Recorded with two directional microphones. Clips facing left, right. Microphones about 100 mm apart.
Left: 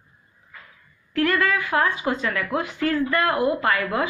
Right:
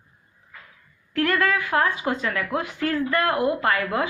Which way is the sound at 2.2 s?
35° right (ahead or behind).